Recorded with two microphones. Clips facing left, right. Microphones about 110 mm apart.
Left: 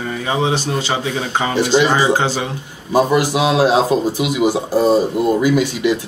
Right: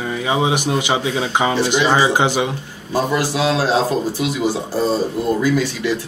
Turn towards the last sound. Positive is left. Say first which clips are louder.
# left 3 dB
turn(degrees=15)  # may be behind; listen again after turning